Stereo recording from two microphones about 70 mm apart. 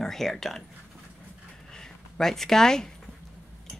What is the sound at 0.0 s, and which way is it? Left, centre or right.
Speech, centre.